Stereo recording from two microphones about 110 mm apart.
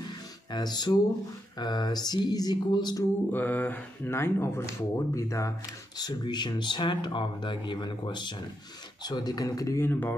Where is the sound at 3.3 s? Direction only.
15° left (ahead or behind).